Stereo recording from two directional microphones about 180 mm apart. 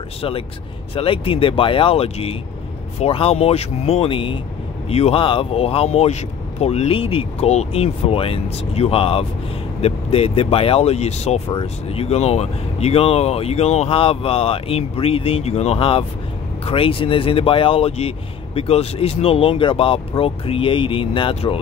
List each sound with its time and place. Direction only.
0.9 s speech: 30° left (ahead or behind)